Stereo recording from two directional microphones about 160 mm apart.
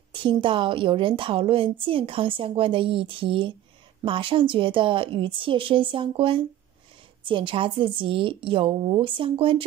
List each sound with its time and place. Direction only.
0.1 s a woman's voice: 30° right (ahead or behind)